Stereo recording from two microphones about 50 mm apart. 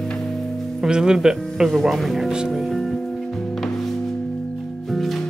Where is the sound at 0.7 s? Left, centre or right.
Centre.